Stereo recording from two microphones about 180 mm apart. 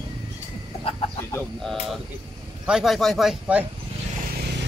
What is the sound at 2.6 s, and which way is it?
Speech, centre (ahead or behind).